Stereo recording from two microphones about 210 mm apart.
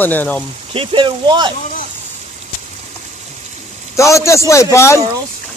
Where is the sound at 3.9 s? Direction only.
15° left (ahead or behind).